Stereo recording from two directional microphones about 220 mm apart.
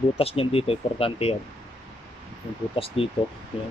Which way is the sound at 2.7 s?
25° left (ahead or behind).